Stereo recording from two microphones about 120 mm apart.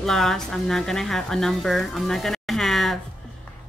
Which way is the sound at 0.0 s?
5° left (ahead or behind).